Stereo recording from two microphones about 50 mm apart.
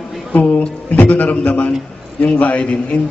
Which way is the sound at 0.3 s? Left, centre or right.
Left.